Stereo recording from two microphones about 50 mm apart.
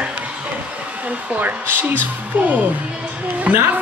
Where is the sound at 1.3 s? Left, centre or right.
Right.